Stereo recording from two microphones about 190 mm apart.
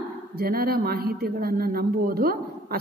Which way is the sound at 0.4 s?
55° right (ahead or behind).